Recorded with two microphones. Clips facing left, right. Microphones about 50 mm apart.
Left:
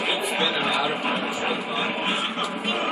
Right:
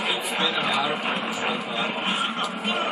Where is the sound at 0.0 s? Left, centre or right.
Centre.